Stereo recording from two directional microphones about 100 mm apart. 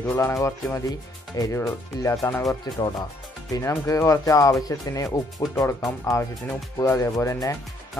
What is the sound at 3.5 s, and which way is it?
Speech, 35° left (ahead or behind).